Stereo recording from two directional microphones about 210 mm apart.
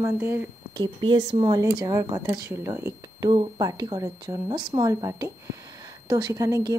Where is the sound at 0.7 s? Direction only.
20° right (ahead or behind).